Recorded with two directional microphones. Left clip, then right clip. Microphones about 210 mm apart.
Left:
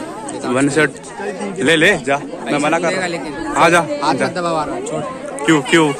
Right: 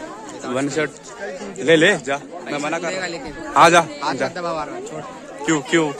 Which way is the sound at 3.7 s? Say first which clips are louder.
Left 2 dB; 15° right (ahead or behind).